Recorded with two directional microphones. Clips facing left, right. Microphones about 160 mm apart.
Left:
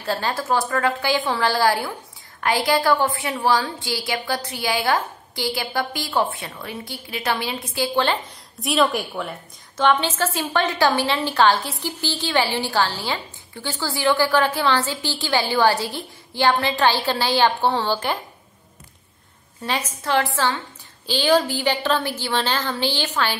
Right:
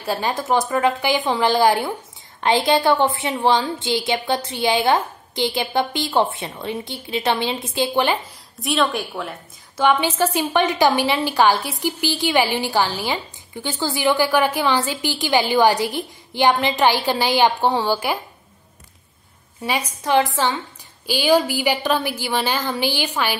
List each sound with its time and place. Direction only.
0.0 s a woman's voice: 15° right (ahead or behind)
8.5 s a woman's voice: centre (ahead or behind)
19.6 s a woman's voice: 10° right (ahead or behind)